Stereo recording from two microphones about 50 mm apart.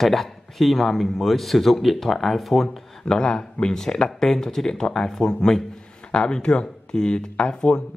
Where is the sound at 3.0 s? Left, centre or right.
Centre.